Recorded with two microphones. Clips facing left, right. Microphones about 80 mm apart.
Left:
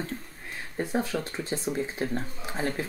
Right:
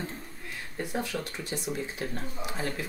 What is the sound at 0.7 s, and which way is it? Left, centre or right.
Speech, left.